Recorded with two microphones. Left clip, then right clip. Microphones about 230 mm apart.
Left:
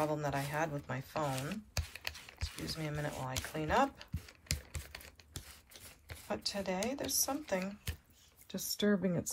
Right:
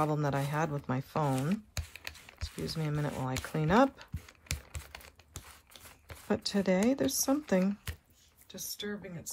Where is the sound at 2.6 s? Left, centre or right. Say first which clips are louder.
Right 4 dB; right.